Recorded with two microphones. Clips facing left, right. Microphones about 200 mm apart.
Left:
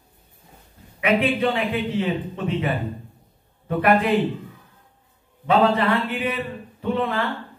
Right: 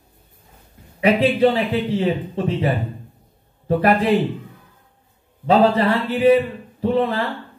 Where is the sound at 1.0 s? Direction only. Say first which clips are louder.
Right 5 dB; 35° right (ahead or behind).